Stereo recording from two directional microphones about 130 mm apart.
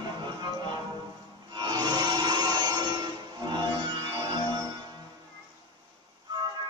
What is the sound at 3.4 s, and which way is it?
Music, 35° right (ahead or behind).